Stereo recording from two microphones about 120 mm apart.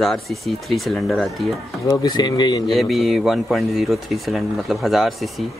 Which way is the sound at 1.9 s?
35° left (ahead or behind).